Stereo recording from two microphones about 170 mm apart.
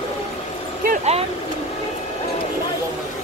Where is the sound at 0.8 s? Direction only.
40° right (ahead or behind).